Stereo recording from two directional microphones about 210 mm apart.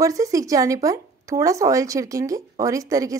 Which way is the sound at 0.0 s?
15° right (ahead or behind).